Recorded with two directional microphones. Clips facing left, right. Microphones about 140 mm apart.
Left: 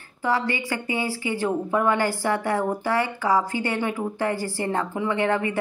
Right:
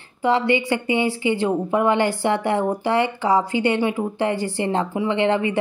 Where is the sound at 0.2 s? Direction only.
20° right (ahead or behind).